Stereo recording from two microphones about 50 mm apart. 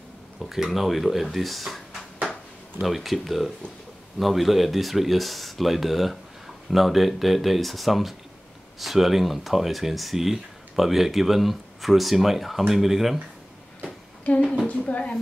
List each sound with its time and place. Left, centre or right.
0.4 s a sound: centre
0.7 s speech: centre
14.9 s a woman's voice: left